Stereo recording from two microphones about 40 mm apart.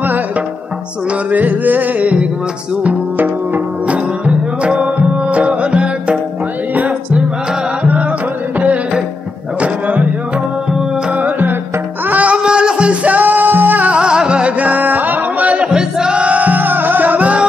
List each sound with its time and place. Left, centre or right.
1.3 s music: right
3.8 s music: right
6.7 s music: right
9.6 s music: right
11.2 s music: right
12.4 s music: right
13.1 s music: right
13.8 s music: right
14.6 s music: right
15.5 s music: right